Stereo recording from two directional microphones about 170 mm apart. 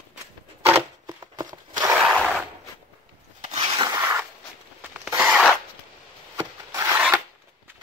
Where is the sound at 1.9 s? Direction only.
5° right (ahead or behind).